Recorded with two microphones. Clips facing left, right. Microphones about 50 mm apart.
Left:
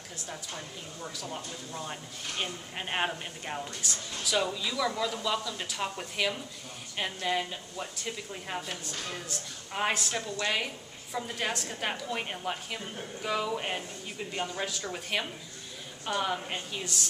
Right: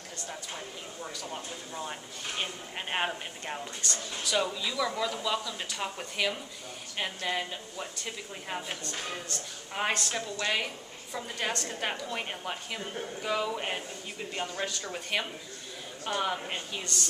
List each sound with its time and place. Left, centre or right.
1.0 s speech: centre
8.9 s a woman's voice: centre
9.3 s speech: centre